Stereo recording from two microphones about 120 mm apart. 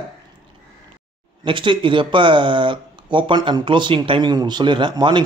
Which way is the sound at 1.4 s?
45° right (ahead or behind).